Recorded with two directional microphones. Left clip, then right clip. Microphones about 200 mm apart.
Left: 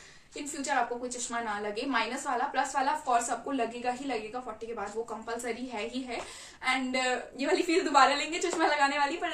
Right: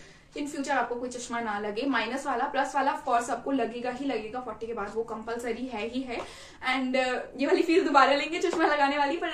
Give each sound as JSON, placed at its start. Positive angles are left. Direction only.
{"t": 0.4, "sound": "a woman's voice", "side_deg": 5}
{"t": 5.4, "sound": "a woman's voice", "side_deg": 5}